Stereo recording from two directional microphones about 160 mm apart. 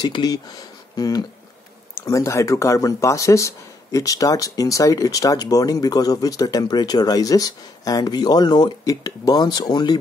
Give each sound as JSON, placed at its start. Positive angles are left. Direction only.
{"t": 0.0, "sound": "speech", "side_deg": 25}